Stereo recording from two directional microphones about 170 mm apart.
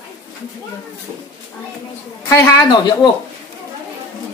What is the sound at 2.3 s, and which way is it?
Speech, 15° left (ahead or behind).